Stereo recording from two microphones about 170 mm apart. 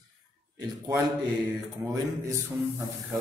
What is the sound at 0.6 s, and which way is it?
Speech, 15° right (ahead or behind).